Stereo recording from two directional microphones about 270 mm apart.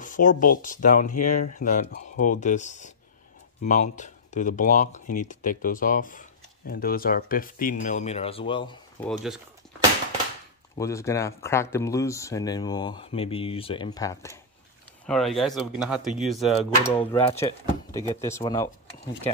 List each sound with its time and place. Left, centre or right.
0.0 s speech: left
9.0 s speech: centre
10.8 s speech: centre
15.0 s speech: centre
17.1 s speech: centre